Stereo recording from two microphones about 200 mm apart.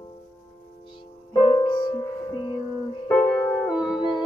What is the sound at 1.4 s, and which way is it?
Music, 25° left (ahead or behind).